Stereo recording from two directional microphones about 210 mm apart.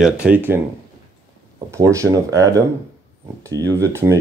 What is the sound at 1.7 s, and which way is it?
Speech, 15° right (ahead or behind).